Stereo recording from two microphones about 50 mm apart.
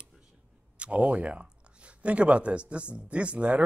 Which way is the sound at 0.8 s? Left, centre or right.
Right.